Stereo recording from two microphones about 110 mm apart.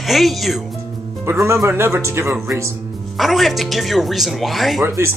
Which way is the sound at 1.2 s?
25° right (ahead or behind).